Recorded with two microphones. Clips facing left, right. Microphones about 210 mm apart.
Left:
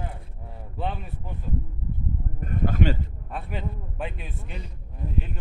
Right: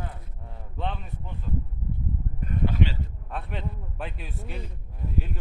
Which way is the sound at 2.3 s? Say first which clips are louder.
Left 1 dB; 50° left (ahead or behind).